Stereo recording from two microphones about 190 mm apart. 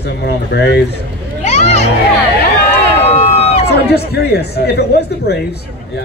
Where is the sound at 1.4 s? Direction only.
35° left (ahead or behind).